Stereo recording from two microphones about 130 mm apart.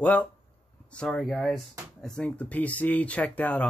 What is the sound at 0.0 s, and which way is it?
Speech, 10° left (ahead or behind).